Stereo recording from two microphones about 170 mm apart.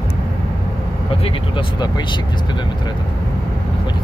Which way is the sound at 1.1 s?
30° left (ahead or behind).